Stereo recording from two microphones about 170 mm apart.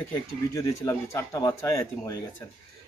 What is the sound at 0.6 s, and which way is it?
Speech, 15° left (ahead or behind).